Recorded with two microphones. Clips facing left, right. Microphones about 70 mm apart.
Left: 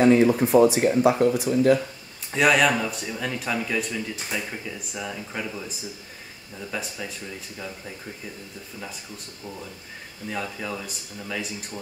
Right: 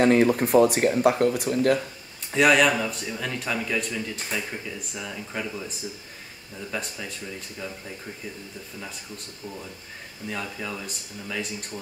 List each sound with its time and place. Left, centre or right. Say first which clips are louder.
0.1 s speech: left 1 dB; right
2.3 s speech: even; centre
10.3 s speech: left 2 dB; centre